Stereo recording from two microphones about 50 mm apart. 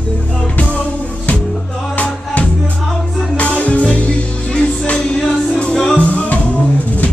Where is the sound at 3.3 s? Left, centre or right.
Left.